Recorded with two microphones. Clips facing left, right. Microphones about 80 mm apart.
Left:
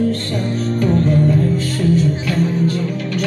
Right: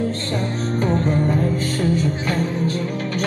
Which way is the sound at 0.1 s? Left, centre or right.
Right.